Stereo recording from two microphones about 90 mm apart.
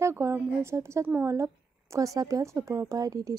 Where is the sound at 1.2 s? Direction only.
35° right (ahead or behind).